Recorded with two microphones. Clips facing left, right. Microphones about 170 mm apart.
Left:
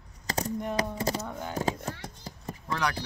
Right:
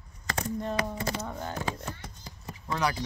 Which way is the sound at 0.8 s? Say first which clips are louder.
Left 2 dB; 40° left (ahead or behind).